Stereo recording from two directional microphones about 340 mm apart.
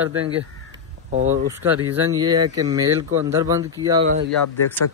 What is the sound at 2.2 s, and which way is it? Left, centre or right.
Speech, centre.